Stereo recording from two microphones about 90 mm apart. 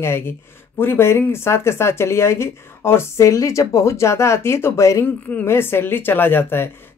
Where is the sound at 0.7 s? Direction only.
25° left (ahead or behind).